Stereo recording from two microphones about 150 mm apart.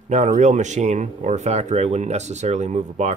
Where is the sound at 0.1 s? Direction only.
55° right (ahead or behind).